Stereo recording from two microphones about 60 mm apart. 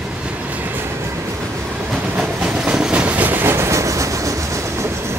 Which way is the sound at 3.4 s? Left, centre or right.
Right.